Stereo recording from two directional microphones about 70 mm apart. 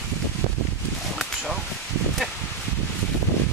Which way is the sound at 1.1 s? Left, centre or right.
Centre.